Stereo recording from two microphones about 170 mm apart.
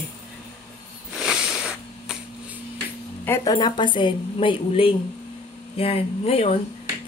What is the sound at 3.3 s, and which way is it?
A woman's voice, 25° left (ahead or behind).